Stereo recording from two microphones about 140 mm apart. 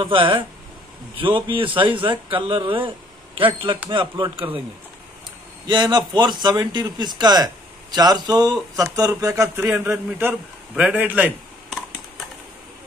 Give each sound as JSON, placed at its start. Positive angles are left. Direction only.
{"t": 0.0, "sound": "a man's voice", "side_deg": -40}
{"t": 5.7, "sound": "a man's voice", "side_deg": -30}